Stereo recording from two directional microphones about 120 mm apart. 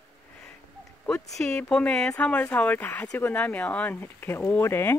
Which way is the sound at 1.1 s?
5° left (ahead or behind).